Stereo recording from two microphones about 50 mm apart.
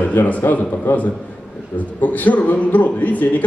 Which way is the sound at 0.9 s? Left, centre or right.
Left.